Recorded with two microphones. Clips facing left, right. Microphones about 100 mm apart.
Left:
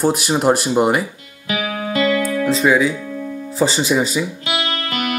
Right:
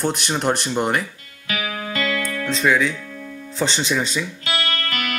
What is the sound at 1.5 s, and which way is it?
Music, 30° left (ahead or behind).